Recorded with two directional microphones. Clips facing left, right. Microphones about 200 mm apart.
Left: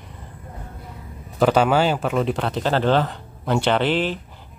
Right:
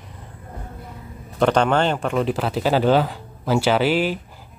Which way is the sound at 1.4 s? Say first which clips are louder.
Left 1 dB; 5° left (ahead or behind).